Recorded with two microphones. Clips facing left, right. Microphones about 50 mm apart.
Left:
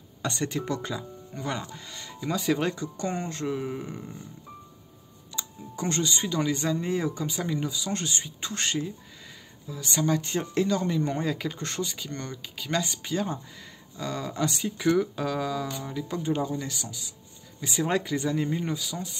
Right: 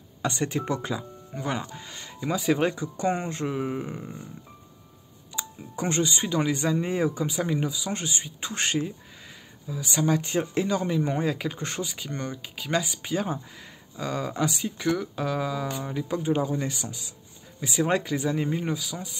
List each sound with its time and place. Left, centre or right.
0.2 s speech: centre
5.3 s speech: centre
8.5 s speech: right
9.7 s speech: centre
14.5 s speech: centre
16.4 s speech: right
17.6 s speech: centre